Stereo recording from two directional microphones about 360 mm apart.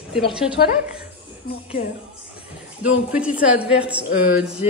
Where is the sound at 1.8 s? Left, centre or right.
Left.